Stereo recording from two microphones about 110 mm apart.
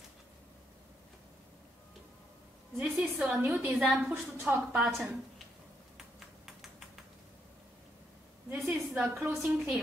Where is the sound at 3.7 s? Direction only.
5° right (ahead or behind).